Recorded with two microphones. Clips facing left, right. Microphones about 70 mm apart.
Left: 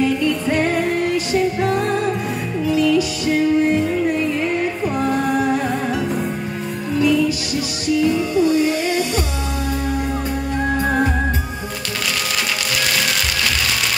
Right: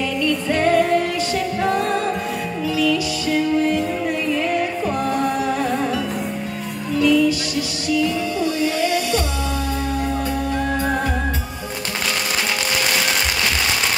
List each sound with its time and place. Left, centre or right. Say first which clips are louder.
0.0 s music: left 3 dB; left
2.6 s music: left 4 dB; left
7.0 s music: right 1 dB; centre